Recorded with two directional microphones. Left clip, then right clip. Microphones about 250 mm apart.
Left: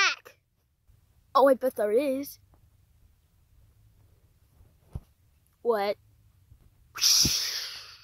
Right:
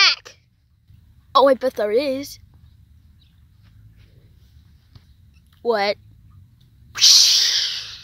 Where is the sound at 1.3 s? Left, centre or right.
Left.